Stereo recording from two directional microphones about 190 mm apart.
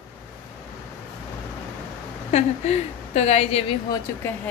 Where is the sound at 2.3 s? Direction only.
35° left (ahead or behind).